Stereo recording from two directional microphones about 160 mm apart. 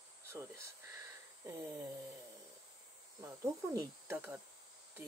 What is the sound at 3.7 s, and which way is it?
Speech, 15° right (ahead or behind).